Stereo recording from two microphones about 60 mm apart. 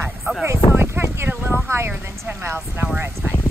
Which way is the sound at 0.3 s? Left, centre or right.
Right.